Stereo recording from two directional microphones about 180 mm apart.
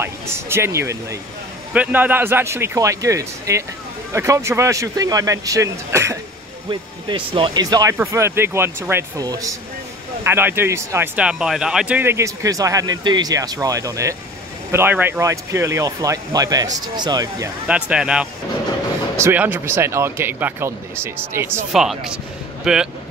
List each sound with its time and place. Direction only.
0.0 s speech: 15° right (ahead or behind)
6.7 s speech: 30° right (ahead or behind)
17.6 s speech: 5° right (ahead or behind)
21.7 s speech: 5° right (ahead or behind)